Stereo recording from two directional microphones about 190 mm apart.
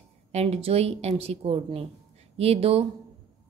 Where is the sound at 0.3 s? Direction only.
30° right (ahead or behind).